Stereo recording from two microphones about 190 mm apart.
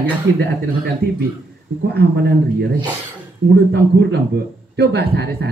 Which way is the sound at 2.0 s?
60° right (ahead or behind).